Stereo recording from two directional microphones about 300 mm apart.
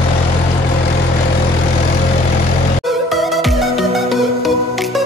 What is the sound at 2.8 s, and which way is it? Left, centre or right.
Music, centre.